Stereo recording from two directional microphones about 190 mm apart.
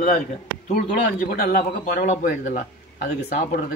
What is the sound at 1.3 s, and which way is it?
Speech, 50° left (ahead or behind).